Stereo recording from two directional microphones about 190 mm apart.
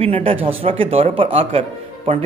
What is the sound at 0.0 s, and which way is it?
Speech, 30° right (ahead or behind).